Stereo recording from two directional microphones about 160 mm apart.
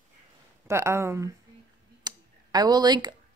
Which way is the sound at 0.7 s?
15° right (ahead or behind).